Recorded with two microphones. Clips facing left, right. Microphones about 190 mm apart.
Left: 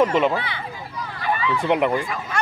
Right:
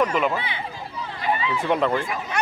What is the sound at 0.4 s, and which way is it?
Speech, 15° right (ahead or behind).